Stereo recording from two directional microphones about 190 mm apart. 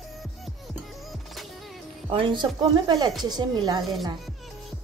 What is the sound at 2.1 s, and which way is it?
Speech, 25° right (ahead or behind).